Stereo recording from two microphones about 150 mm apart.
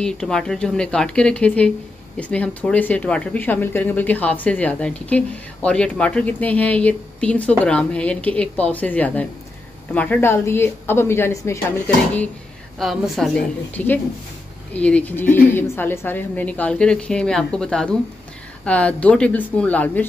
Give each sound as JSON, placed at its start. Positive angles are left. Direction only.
{"t": 0.0, "sound": "speech", "side_deg": 5}
{"t": 12.7, "sound": "speech", "side_deg": 0}